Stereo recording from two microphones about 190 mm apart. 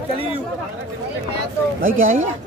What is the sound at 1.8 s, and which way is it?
Speech, 45° right (ahead or behind).